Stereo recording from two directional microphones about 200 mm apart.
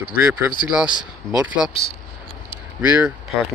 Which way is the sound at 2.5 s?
5° right (ahead or behind).